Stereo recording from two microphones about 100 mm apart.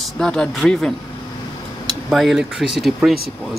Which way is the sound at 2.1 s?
Centre (ahead or behind).